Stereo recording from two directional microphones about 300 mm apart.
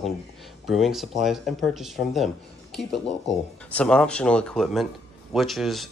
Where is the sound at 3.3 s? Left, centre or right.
Centre.